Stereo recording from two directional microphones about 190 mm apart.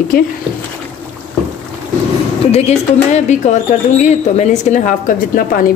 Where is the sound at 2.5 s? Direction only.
35° left (ahead or behind).